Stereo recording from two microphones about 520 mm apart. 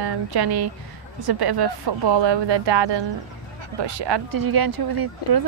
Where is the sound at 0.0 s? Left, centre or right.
Right.